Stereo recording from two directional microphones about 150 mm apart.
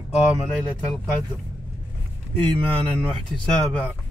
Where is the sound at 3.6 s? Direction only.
10° left (ahead or behind).